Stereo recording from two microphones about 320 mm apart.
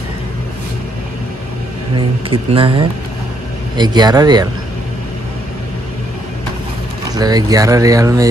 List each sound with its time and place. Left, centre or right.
2.0 s speech: centre
7.1 s speech: centre